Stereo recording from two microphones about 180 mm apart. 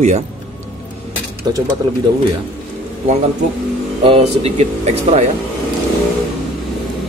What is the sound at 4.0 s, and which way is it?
Speech, 35° right (ahead or behind).